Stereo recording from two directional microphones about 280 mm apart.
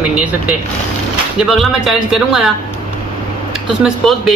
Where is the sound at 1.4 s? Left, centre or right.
Centre.